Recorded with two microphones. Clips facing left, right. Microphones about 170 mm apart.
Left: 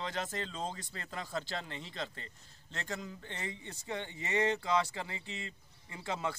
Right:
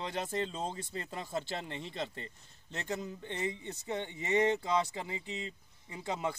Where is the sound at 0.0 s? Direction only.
20° right (ahead or behind).